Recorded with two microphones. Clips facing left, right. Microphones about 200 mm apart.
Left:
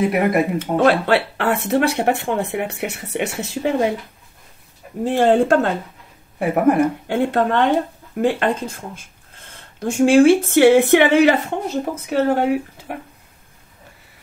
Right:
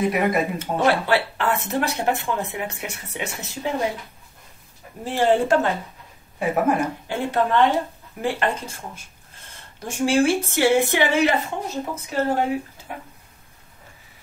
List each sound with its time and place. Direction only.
0.1 s speech: 60° left (ahead or behind)
5.1 s speech: 55° left (ahead or behind)